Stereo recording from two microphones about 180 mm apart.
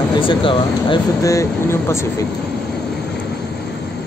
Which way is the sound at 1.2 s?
15° left (ahead or behind).